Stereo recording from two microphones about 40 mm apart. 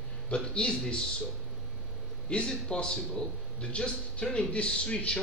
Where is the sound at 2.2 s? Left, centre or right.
Left.